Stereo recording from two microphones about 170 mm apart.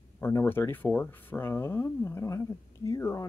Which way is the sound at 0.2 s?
10° left (ahead or behind).